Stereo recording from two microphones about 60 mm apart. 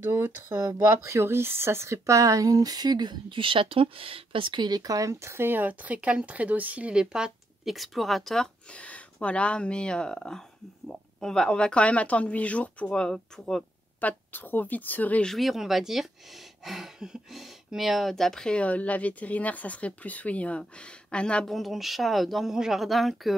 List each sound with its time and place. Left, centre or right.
0.0 s speech: right
4.7 s speech: right
5.2 s speech: right; by 7.7 s centre
7.7 s speech: centre
8.7 s speech: left
12.9 s speech: centre
14.0 s speech: left
15.2 s speech: centre
21.5 s speech: centre